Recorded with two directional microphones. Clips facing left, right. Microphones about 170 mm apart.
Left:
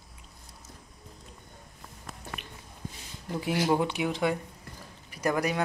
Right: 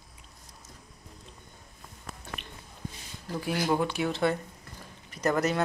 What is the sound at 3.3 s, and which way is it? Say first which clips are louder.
Speech: left 2 dB; 20° left (ahead or behind).